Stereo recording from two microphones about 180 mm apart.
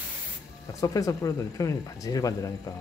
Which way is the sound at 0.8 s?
20° left (ahead or behind).